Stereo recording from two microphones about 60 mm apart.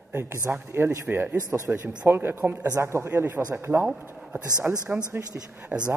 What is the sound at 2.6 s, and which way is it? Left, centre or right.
Speech, right.